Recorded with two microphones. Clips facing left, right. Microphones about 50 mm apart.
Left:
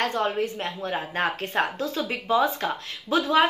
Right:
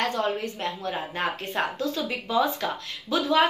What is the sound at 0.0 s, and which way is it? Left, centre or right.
A woman's voice, left.